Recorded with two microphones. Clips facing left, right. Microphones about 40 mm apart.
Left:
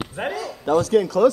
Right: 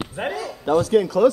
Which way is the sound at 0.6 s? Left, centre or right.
Right.